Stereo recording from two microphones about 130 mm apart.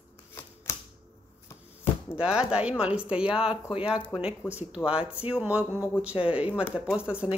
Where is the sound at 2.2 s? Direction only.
10° right (ahead or behind).